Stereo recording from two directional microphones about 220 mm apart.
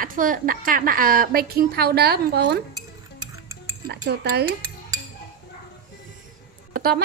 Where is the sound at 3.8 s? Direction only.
45° right (ahead or behind).